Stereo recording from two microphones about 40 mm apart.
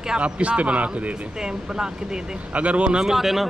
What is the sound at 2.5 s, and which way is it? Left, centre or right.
Speech, right.